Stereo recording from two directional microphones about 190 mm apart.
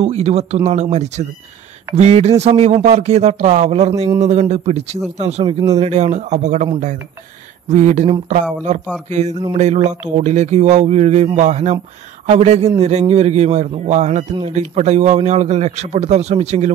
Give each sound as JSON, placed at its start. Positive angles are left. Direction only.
{"t": 0.0, "sound": "a man's voice", "side_deg": -35}